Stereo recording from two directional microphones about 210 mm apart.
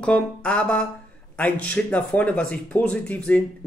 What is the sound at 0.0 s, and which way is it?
Speech, 5° left (ahead or behind).